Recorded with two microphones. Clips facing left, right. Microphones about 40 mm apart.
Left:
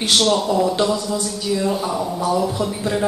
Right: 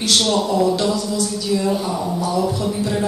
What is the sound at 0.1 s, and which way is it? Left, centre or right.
A man's voice, centre.